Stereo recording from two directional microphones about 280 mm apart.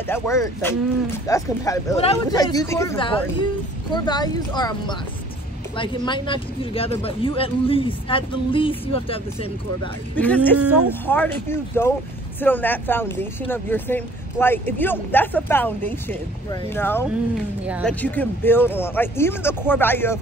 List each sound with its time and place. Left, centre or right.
0.0 s speech: centre
10.1 s speech: centre
17.6 s speech: centre
18.0 s speech: centre